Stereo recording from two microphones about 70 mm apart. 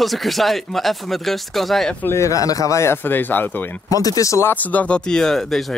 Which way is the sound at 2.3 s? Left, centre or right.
Left.